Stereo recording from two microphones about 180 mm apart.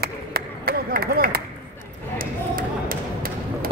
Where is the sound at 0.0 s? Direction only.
60° right (ahead or behind).